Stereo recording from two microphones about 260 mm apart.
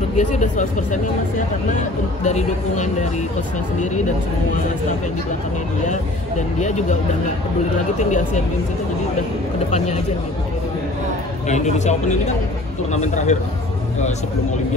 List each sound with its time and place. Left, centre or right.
0.2 s speech: left
5.9 s speech: left
8.0 s speech: left
9.7 s speech: left
11.4 s speech: left